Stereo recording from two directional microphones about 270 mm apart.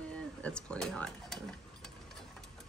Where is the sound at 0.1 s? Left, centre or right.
Centre.